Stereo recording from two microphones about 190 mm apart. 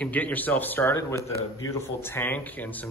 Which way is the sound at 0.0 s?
10° left (ahead or behind).